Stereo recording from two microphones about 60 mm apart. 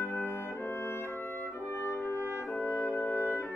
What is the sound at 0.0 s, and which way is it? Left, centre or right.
Music, left.